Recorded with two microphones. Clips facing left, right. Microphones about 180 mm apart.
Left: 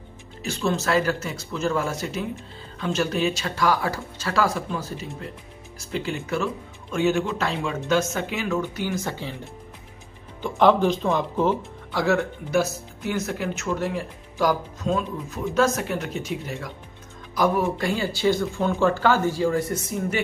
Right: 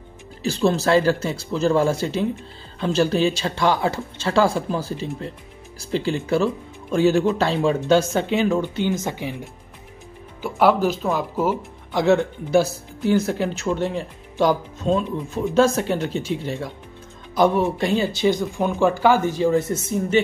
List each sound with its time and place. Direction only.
0.4 s speech: 35° right (ahead or behind); by 9.4 s 15° right (ahead or behind)
10.4 s speech: 5° right (ahead or behind)
11.9 s speech: 20° right (ahead or behind)